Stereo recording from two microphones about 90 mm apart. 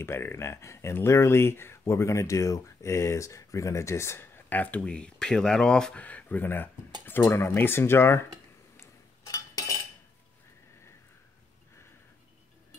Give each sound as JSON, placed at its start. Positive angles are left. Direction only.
{"t": 0.0, "sound": "speech", "side_deg": 25}
{"t": 4.5, "sound": "speech", "side_deg": 20}
{"t": 9.2, "sound": "cutlery", "side_deg": 40}